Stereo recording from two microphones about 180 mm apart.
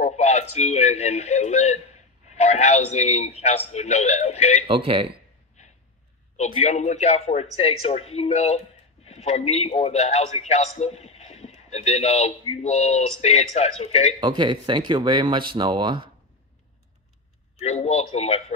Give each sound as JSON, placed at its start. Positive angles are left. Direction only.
{"t": 0.0, "sound": "speech", "side_deg": 40}
{"t": 4.6, "sound": "speech", "side_deg": -30}
{"t": 6.3, "sound": "speech", "side_deg": 40}
{"t": 14.2, "sound": "speech", "side_deg": -25}
{"t": 17.6, "sound": "speech", "side_deg": 40}